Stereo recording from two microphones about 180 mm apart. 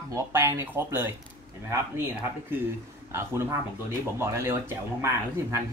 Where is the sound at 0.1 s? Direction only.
15° right (ahead or behind).